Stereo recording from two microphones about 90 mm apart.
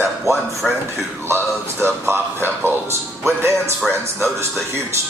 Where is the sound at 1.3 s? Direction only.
25° right (ahead or behind).